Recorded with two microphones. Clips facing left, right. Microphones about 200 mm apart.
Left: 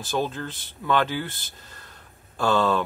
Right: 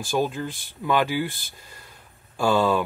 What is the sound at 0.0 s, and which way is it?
Speech, 10° right (ahead or behind).